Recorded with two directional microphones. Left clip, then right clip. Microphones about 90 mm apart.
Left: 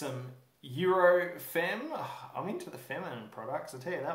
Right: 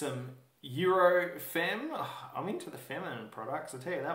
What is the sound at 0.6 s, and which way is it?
Speech, 30° left (ahead or behind).